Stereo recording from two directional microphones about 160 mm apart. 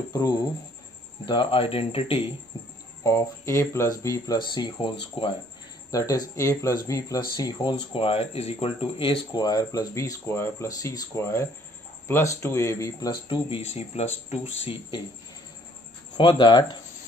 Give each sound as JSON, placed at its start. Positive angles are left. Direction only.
{"t": 0.1, "sound": "speech", "side_deg": 20}
{"t": 3.0, "sound": "speech", "side_deg": 20}
{"t": 5.9, "sound": "speech", "side_deg": 20}
{"t": 13.3, "sound": "speech", "side_deg": 40}
{"t": 16.2, "sound": "speech", "side_deg": 30}